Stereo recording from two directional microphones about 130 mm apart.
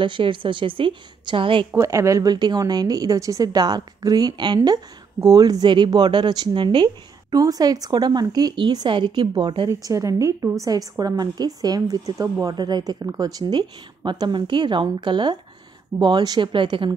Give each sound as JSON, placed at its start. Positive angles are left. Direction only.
{"t": 0.0, "sound": "a woman's voice", "side_deg": -40}
{"t": 1.7, "sound": "a woman's voice", "side_deg": -25}